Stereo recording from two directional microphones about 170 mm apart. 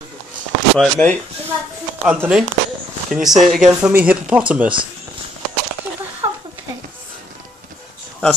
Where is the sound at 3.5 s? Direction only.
5° right (ahead or behind).